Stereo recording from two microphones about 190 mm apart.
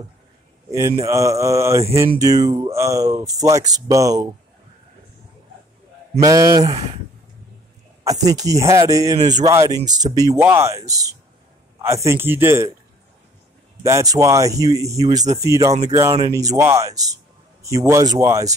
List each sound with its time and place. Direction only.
0.7 s speech: 15° right (ahead or behind)
6.2 s speech: 15° right (ahead or behind)
6.7 s speech: 35° right (ahead or behind)
8.0 s speech: 20° right (ahead or behind)
13.8 s speech: 15° right (ahead or behind)